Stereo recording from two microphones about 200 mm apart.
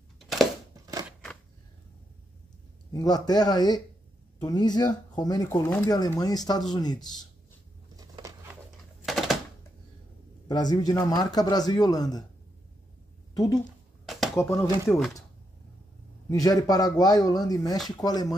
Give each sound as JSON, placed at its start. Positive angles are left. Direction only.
{"t": 0.2, "sound": "crushing", "side_deg": 0}
{"t": 2.9, "sound": "speech", "side_deg": 20}
{"t": 7.9, "sound": "a sound", "side_deg": -15}
{"t": 9.0, "sound": "typewriter", "side_deg": 0}
{"t": 10.5, "sound": "speech", "side_deg": 20}
{"t": 14.3, "sound": "speech", "side_deg": 15}
{"t": 16.3, "sound": "speech", "side_deg": 15}